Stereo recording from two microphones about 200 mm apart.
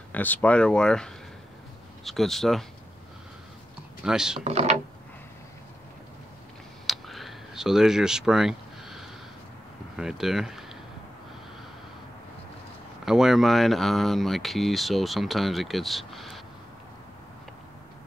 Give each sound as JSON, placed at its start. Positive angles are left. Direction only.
{"t": 0.1, "sound": "speech", "side_deg": 10}
{"t": 4.0, "sound": "speech", "side_deg": -5}
{"t": 4.5, "sound": "speech", "side_deg": -30}
{"t": 6.9, "sound": "a sound", "side_deg": 0}
{"t": 9.9, "sound": "speech", "side_deg": 0}
{"t": 13.0, "sound": "speech", "side_deg": 0}